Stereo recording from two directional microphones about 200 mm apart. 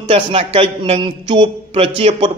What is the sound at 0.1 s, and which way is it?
Speech, 30° right (ahead or behind).